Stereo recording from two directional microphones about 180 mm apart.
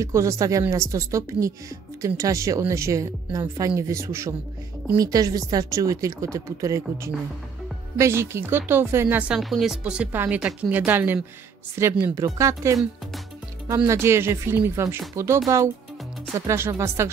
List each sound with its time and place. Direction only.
0.0 s a woman's voice: 15° right (ahead or behind)
9.4 s speech: centre (ahead or behind); by 12.7 s 15° right (ahead or behind)
13.8 s speech: 15° right (ahead or behind)